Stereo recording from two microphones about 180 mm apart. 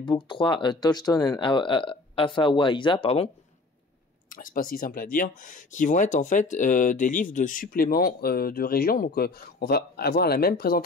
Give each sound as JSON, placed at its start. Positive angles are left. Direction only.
{"t": 0.0, "sound": "speech", "side_deg": 25}
{"t": 4.3, "sound": "speech", "side_deg": 50}